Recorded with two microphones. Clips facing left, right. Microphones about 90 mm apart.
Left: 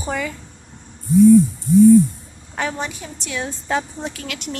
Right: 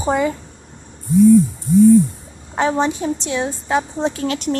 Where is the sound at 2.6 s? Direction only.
30° right (ahead or behind).